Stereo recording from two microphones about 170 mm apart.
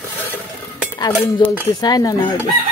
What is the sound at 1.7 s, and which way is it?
Speech, 25° left (ahead or behind).